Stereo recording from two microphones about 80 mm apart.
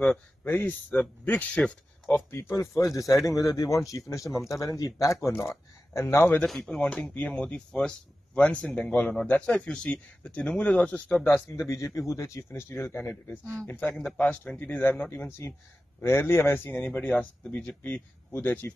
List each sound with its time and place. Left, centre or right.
0.0 s speech: centre
2.3 s speech: left
6.4 s speech: centre
6.8 s speech: centre
11.7 s speech: left; by 17.7 s centre
17.8 s speech: left